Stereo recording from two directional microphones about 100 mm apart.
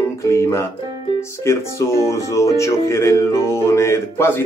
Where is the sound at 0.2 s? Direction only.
30° left (ahead or behind).